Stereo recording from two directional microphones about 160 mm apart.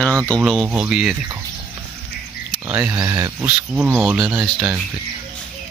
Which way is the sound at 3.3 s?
10° right (ahead or behind).